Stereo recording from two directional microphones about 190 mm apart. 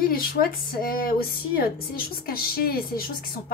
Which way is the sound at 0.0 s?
50° left (ahead or behind).